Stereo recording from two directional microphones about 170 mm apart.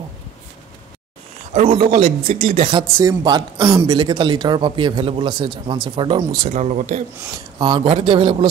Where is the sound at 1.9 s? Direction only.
50° right (ahead or behind).